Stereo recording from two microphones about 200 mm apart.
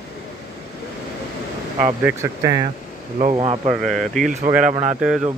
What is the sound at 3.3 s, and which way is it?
Speech, 25° right (ahead or behind).